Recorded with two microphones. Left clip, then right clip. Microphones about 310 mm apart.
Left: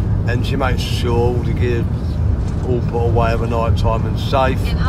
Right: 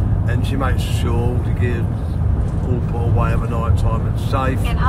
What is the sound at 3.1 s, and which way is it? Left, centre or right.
Speech, centre.